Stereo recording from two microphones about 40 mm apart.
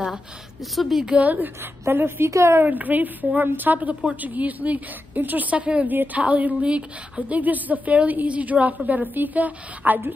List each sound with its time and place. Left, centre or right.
0.7 s a woman's voice: centre
1.1 s a woman's voice: right
2.0 s a woman's voice: right
2.6 s a woman's voice: right